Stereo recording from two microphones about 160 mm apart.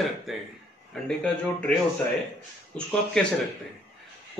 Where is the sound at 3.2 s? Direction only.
5° left (ahead or behind).